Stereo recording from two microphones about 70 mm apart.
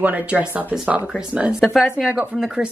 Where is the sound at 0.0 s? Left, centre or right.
Centre.